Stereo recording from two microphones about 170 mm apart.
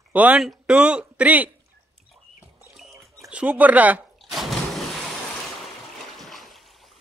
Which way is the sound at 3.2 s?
10° right (ahead or behind).